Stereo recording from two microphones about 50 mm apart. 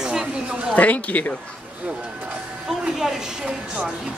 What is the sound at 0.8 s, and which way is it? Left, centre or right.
Speech, left.